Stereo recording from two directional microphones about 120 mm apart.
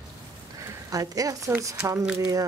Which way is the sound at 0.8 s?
30° right (ahead or behind).